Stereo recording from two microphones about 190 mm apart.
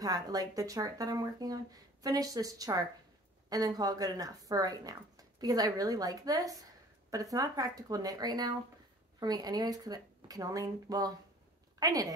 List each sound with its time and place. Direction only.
0.0 s a woman's voice: 20° right (ahead or behind)